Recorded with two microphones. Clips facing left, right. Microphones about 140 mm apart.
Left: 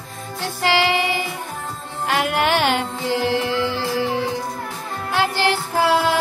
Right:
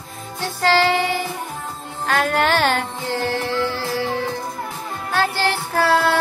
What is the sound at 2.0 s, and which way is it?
Music, 15° left (ahead or behind).